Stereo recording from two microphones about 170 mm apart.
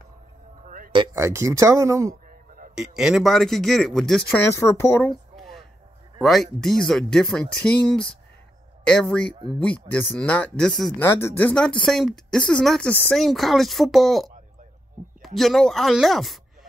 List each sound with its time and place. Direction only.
0.9 s speech: 20° right (ahead or behind)
3.0 s speech: centre (ahead or behind)
5.3 s a sound: centre (ahead or behind)
6.2 s speech: centre (ahead or behind)